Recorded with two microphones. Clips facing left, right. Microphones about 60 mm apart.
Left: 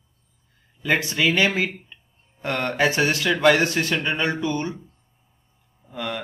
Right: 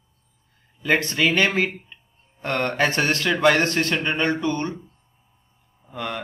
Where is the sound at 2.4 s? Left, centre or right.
Centre.